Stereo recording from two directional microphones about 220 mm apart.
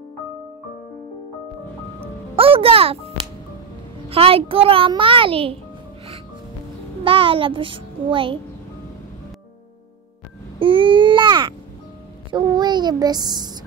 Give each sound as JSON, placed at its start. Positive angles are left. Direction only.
{"t": 2.3, "sound": "a child's voice", "side_deg": -25}
{"t": 4.1, "sound": "a child's voice", "side_deg": -25}
{"t": 7.1, "sound": "a child's voice", "side_deg": -25}
{"t": 10.6, "sound": "babbling", "side_deg": -25}
{"t": 12.3, "sound": "a child's voice", "side_deg": -20}